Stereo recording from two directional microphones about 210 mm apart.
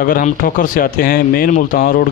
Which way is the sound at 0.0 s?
40° left (ahead or behind).